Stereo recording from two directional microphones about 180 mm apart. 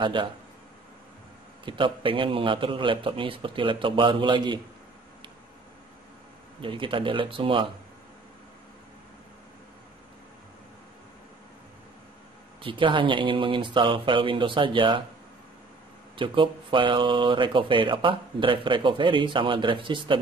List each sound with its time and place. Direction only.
0.0 s speech: 25° right (ahead or behind)
1.6 s speech: 25° right (ahead or behind)
6.6 s speech: 30° right (ahead or behind)
12.6 s speech: 30° right (ahead or behind)
16.2 s speech: 30° right (ahead or behind)